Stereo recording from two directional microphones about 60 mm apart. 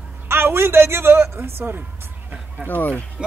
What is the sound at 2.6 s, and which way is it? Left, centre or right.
Speech, left.